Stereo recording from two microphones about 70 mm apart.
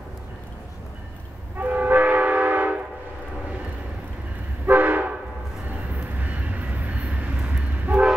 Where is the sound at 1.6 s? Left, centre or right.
Right.